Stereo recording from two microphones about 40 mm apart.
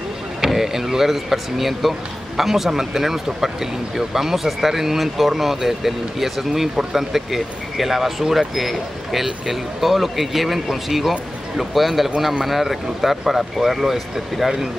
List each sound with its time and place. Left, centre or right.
0.4 s speech: centre